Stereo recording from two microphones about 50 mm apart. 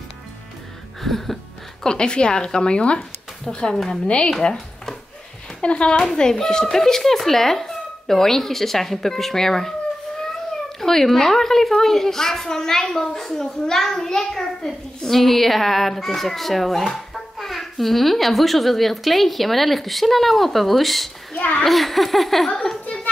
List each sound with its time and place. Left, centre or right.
1.0 s a woman's voice: centre
4.1 s a sound: centre
5.6 s speech: left
10.8 s a woman's voice: centre
21.3 s a child's voice: left
21.6 s a woman's voice: centre